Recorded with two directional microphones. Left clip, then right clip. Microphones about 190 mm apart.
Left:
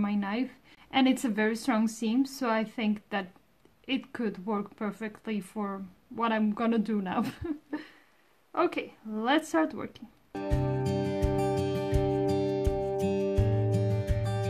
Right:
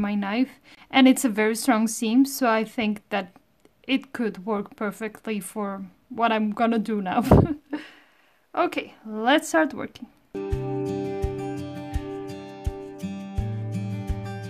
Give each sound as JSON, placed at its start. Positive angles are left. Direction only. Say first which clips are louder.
{"t": 0.0, "sound": "speech", "louder": "right 6 dB", "side_deg": -35}
{"t": 10.3, "sound": "music", "louder": "right 3 dB", "side_deg": 0}